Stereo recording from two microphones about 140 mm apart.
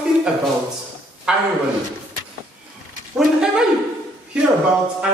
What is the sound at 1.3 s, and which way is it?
Speech, 5° right (ahead or behind).